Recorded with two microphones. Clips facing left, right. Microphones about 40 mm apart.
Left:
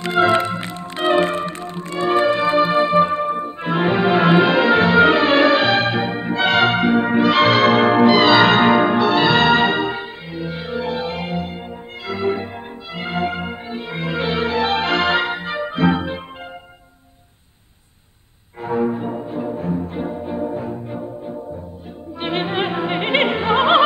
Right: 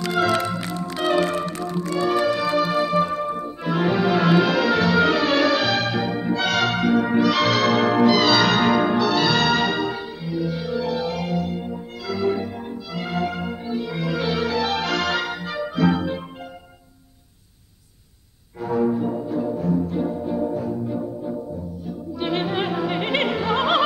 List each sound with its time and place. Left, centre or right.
0.0 s music: left
18.6 s music: left
21.8 s opera: left